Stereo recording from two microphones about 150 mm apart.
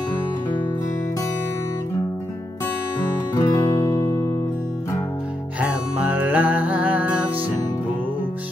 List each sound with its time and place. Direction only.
3.3 s music: 20° left (ahead or behind)
5.6 s music: 10° right (ahead or behind)